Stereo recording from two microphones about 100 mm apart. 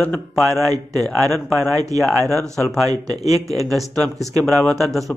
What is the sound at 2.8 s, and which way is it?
Speech, 40° right (ahead or behind).